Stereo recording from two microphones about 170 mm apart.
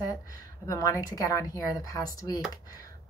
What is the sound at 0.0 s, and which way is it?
A woman's voice, 20° left (ahead or behind).